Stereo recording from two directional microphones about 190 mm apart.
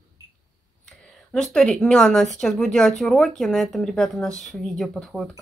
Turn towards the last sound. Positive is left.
turn(degrees=0)  # may be behind; listen again after turning